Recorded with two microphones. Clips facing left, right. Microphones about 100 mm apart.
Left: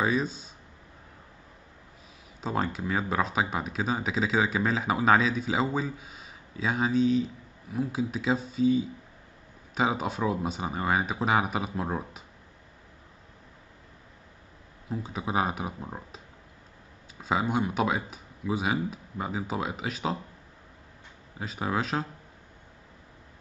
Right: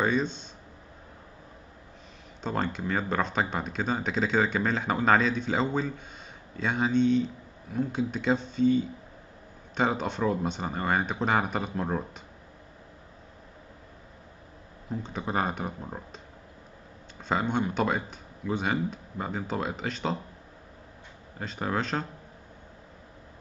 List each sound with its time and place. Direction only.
0.0 s speech: 5° left (ahead or behind)
2.4 s speech: 5° left (ahead or behind)
14.9 s speech: 5° left (ahead or behind)
17.2 s speech: 5° left (ahead or behind)
21.4 s speech: 5° left (ahead or behind)